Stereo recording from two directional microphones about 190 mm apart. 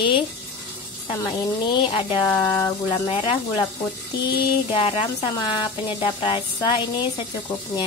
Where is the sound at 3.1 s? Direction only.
25° left (ahead or behind).